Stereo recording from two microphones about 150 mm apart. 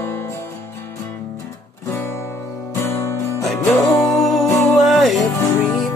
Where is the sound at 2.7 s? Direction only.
15° left (ahead or behind).